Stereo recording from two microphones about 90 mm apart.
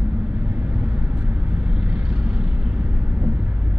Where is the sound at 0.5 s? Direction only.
15° right (ahead or behind).